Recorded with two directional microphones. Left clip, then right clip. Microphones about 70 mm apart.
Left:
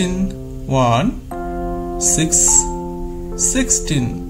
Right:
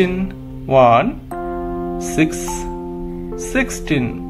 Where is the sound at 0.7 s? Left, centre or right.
Left.